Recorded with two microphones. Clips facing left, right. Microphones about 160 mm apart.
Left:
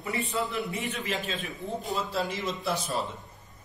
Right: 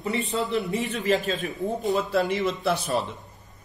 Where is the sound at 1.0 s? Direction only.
40° right (ahead or behind).